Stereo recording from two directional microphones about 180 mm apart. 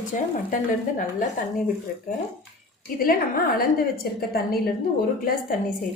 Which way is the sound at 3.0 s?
55° left (ahead or behind).